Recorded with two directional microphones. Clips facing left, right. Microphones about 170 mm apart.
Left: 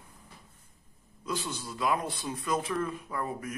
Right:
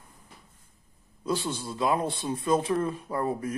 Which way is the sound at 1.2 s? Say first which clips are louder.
Right 6 dB; 30° right (ahead or behind).